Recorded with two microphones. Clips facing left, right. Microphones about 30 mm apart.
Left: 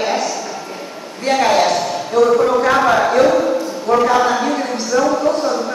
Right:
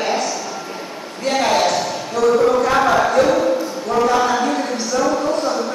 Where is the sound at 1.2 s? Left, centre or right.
Centre.